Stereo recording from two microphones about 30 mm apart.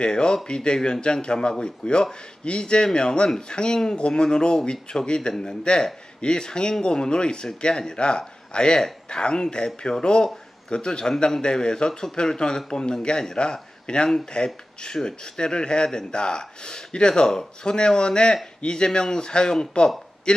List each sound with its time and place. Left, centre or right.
0.0 s speech: left